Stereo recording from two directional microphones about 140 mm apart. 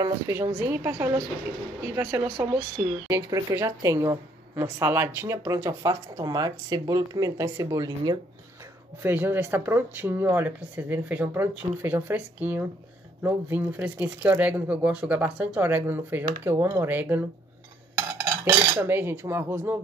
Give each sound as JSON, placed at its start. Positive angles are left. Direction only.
{"t": 0.0, "sound": "speech", "side_deg": -20}
{"t": 9.0, "sound": "speech", "side_deg": -15}
{"t": 17.9, "sound": "cutlery", "side_deg": -20}